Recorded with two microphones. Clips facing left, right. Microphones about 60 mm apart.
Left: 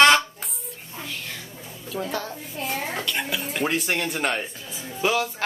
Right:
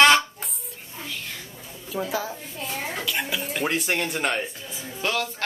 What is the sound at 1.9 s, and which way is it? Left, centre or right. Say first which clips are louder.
Speech: right 1 dB; centre.